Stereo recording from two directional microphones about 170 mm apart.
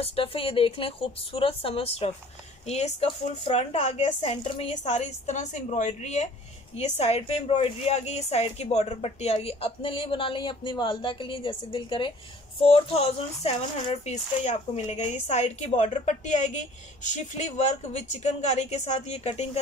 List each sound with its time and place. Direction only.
0.0 s a woman's voice: 35° left (ahead or behind)